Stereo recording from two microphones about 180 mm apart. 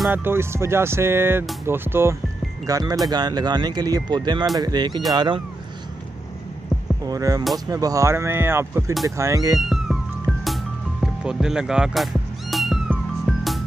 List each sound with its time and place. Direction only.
0.1 s speech: 10° right (ahead or behind)
7.1 s speech: 20° right (ahead or behind)
9.6 s cat: centre (ahead or behind)